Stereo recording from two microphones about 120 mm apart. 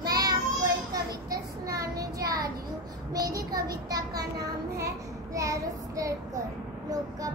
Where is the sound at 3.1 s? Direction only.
30° right (ahead or behind).